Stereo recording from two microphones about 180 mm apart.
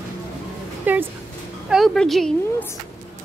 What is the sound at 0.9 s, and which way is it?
A woman's voice, 10° right (ahead or behind).